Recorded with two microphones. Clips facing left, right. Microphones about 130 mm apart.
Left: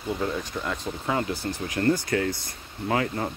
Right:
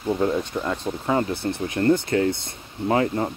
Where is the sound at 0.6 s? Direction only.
15° right (ahead or behind).